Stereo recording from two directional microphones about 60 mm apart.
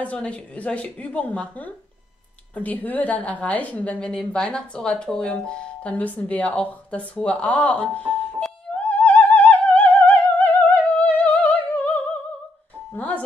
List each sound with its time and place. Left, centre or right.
0.0 s speech: left
8.9 s opera: left
12.9 s speech: left